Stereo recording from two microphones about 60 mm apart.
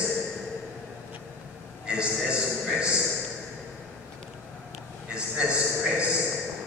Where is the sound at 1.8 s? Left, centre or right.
Centre.